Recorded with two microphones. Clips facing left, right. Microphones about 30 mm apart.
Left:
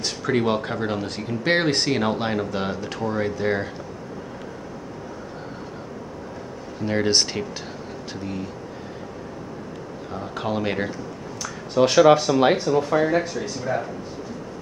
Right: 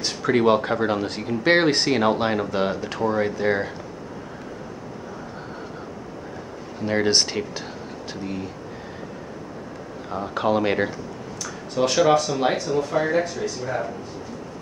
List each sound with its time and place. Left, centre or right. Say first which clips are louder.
0.0 s speech: right 3 dB; centre
6.8 s speech: right 1 dB; centre
10.0 s speech: right 5 dB; centre
11.8 s speech: left 3 dB; centre
12.6 s speech: left 2 dB; centre